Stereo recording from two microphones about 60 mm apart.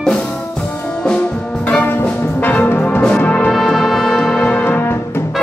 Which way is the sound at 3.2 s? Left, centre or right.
Left.